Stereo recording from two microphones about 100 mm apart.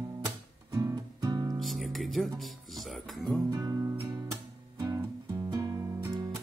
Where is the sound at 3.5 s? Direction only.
35° right (ahead or behind).